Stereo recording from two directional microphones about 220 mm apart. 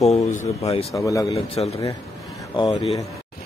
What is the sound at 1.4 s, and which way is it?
Speech, 30° left (ahead or behind).